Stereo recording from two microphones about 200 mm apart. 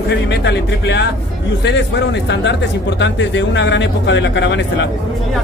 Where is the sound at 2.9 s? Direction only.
65° left (ahead or behind).